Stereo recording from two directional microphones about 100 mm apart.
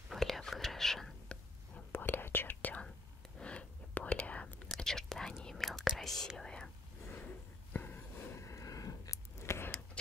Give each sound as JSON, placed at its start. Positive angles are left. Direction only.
{"t": 0.1, "sound": "whispering", "side_deg": 0}
{"t": 1.9, "sound": "whispering", "side_deg": 20}
{"t": 7.1, "sound": "a sound", "side_deg": 20}